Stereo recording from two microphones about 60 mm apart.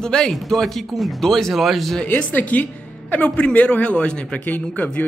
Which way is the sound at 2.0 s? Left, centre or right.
Left.